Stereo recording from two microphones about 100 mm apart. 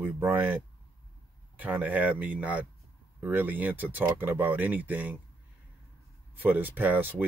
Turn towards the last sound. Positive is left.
turn(degrees=-15)  # may be behind; listen again after turning